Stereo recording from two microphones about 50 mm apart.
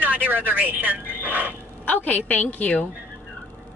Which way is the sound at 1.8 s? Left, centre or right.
Left.